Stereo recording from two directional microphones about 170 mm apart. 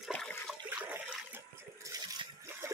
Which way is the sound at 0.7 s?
10° right (ahead or behind).